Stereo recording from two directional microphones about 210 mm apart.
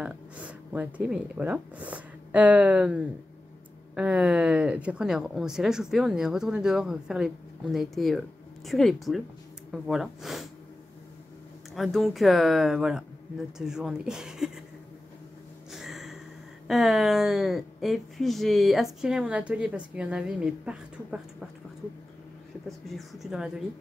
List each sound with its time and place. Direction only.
0.0 s speech: 5° right (ahead or behind)
11.7 s speech: centre (ahead or behind)
15.7 s a sound: centre (ahead or behind)
16.6 s speech: centre (ahead or behind)
22.7 s speech: centre (ahead or behind)